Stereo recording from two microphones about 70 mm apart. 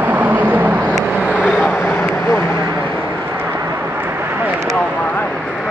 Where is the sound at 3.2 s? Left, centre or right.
Right.